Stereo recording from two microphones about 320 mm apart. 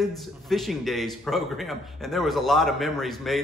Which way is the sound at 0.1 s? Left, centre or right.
Centre.